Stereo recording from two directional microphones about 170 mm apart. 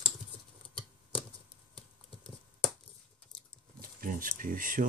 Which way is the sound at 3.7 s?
55° right (ahead or behind).